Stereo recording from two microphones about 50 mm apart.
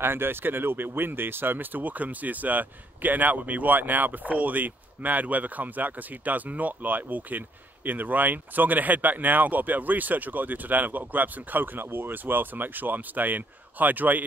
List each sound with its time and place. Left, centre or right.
0.0 s speech: right